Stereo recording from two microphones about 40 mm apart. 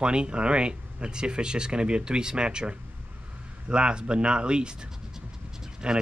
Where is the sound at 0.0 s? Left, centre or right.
Right.